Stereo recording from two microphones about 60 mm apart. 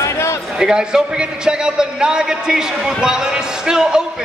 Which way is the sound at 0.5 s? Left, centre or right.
Centre.